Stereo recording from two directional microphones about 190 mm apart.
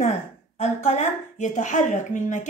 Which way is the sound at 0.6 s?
35° left (ahead or behind).